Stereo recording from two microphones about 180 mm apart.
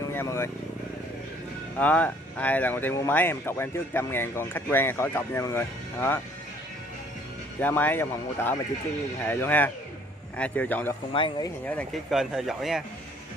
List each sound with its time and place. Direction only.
0.1 s speech: 15° left (ahead or behind)
1.8 s speech: 10° left (ahead or behind)
7.6 s speech: 10° left (ahead or behind)
11.1 s speech: 25° left (ahead or behind)
11.6 s speech: 10° left (ahead or behind)
12.1 s speech: centre (ahead or behind)